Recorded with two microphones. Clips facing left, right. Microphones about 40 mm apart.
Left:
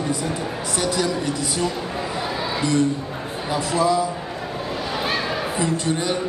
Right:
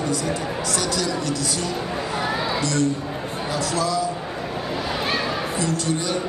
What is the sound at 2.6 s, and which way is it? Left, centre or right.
A man's voice, centre.